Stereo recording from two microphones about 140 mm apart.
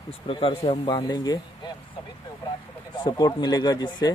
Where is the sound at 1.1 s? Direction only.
30° left (ahead or behind).